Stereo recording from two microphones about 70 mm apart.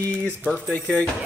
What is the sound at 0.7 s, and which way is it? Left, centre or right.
Speech, left.